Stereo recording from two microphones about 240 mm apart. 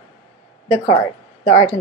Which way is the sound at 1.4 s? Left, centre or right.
Left.